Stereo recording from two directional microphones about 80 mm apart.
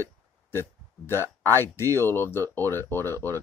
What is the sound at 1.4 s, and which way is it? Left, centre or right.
Speech, left.